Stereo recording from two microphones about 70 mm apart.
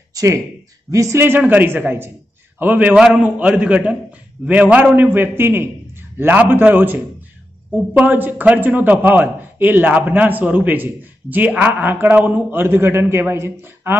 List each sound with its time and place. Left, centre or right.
0.1 s a sound: right
0.8 s a man's voice: right
1.1 s a man's voice: right
8.1 s a man's voice: right